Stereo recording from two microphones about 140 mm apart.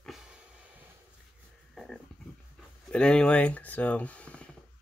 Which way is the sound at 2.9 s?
5° left (ahead or behind).